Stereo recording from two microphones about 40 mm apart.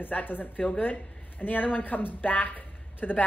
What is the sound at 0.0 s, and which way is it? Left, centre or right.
A woman's voice, left.